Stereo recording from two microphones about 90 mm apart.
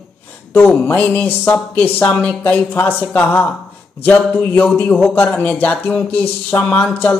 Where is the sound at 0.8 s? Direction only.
15° left (ahead or behind).